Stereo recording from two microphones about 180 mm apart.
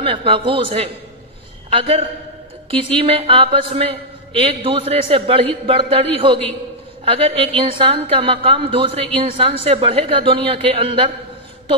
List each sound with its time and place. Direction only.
0.0 s a man's voice: 30° right (ahead or behind)